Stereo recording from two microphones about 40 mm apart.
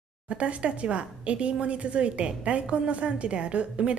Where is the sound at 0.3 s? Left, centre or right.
Right.